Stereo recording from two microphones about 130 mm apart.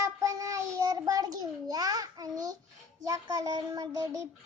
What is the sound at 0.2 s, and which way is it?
Child singing, 25° right (ahead or behind).